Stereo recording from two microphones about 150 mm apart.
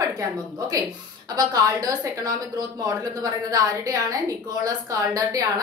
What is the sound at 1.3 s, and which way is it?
A woman's voice, 25° right (ahead or behind).